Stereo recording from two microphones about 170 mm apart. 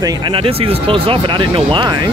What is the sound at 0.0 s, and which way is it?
Speech, 30° right (ahead or behind).